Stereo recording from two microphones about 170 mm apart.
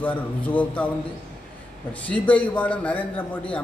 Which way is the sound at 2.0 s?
10° left (ahead or behind).